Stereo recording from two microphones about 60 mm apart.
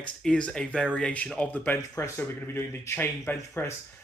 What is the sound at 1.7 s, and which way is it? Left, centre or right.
Speech, left.